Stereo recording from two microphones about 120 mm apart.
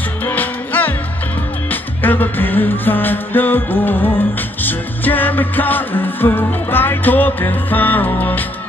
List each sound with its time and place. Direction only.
0.2 s music: 15° left (ahead or behind)